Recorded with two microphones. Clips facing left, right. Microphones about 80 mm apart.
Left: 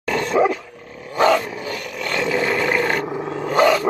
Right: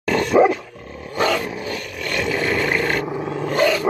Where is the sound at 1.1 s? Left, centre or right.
Left.